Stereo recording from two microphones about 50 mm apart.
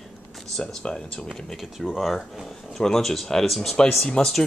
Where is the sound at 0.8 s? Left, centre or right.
Centre.